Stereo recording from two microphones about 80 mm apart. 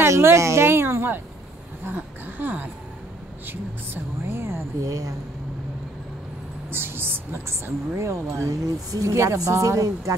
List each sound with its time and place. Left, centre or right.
0.0 s a woman's voice: right
4.8 s speech: right
6.7 s a woman's voice: right